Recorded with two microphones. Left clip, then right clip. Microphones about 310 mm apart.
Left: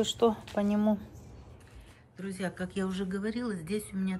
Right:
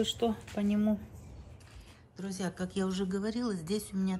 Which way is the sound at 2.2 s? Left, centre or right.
Centre.